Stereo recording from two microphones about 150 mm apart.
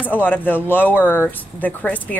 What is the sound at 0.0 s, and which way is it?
Speech, 10° left (ahead or behind).